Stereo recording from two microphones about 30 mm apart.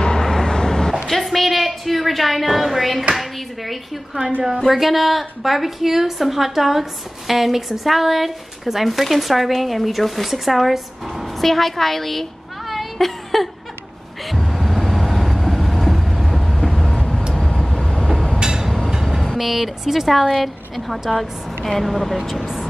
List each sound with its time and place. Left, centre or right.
0.2 s vehicle: centre
0.5 s a sound: left
1.0 s a sound: centre
3.2 s a woman's voice: centre
14.3 s vehicle: centre
16.8 s vehicle: left
17.8 s train: centre
18.4 s a sound: right
19.3 s a woman's voice: centre
20.1 s a woman's voice: centre